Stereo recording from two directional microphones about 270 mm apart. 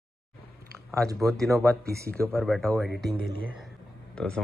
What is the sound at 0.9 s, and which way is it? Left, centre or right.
Speech, centre.